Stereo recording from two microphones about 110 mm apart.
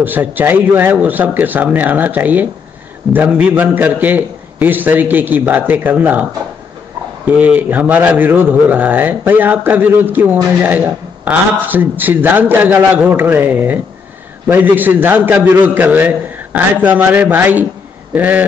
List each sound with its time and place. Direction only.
0.0 s a man's voice: 15° right (ahead or behind)
7.2 s a man's voice: 15° right (ahead or behind)